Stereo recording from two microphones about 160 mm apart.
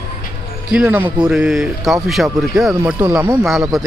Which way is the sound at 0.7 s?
10° right (ahead or behind).